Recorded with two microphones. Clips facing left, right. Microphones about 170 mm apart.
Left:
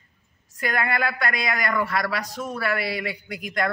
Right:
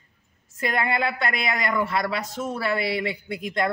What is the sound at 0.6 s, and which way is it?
A man's voice, 25° right (ahead or behind).